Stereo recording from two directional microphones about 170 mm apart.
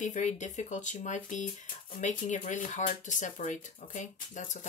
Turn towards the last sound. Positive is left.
turn(degrees=45)  # may be behind; listen again after turning